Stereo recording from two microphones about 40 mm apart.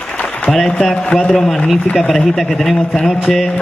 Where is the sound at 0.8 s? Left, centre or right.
Centre.